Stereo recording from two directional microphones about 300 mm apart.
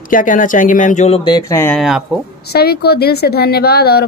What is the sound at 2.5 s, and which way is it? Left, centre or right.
Speech, left.